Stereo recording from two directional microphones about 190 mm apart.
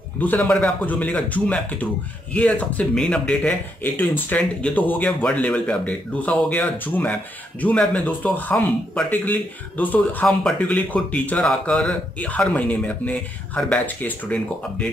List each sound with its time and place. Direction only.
0.2 s speech: 5° left (ahead or behind)